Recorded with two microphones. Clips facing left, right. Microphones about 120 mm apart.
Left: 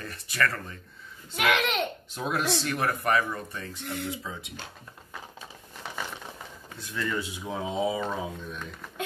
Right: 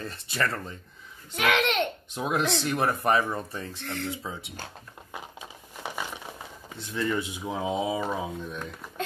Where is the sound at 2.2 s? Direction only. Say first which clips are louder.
Right 2 dB; 20° right (ahead or behind).